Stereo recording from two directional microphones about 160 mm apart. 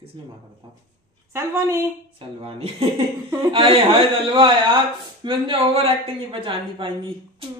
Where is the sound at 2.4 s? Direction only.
35° right (ahead or behind).